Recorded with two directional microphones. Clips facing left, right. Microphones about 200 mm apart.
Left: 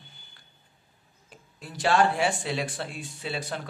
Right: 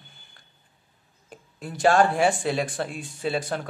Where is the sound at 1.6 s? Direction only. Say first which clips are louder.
Right 4 dB; 50° right (ahead or behind).